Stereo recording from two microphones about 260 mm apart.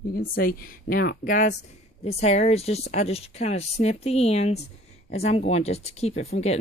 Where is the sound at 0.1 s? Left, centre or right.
Left.